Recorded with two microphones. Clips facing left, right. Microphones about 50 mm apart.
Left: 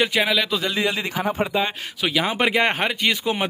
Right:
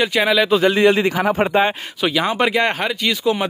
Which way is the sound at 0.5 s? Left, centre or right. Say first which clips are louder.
Right 9 dB; right.